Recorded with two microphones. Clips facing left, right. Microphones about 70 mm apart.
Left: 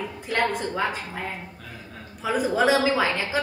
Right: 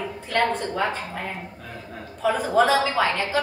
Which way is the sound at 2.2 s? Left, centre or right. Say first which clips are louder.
Right 2 dB; centre.